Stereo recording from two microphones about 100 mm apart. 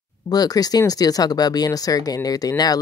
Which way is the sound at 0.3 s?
40° left (ahead or behind).